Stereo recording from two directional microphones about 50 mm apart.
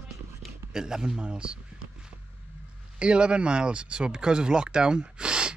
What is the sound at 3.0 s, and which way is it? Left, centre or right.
Speech, centre.